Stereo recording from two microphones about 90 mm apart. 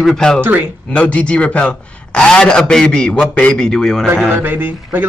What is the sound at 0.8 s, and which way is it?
A man's voice, 15° left (ahead or behind).